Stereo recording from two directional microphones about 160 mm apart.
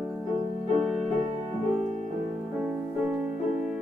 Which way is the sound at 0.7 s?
Centre (ahead or behind).